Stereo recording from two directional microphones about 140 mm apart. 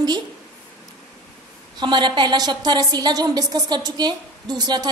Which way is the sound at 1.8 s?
35° right (ahead or behind).